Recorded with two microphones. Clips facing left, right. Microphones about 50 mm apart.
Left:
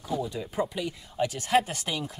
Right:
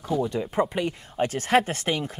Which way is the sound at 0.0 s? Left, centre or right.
Right.